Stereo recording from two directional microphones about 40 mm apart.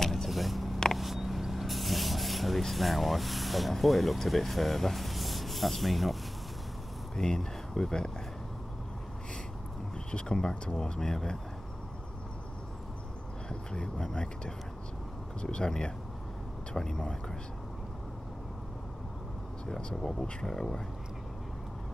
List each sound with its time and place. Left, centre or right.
0.0 s vehicle: centre
0.9 s spray: centre
7.2 s speech: centre
10.1 s speech: centre
13.5 s speech: centre
19.7 s speech: centre